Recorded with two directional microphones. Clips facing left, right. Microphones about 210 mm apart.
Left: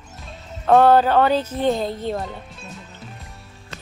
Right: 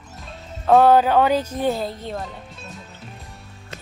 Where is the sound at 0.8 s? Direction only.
10° right (ahead or behind).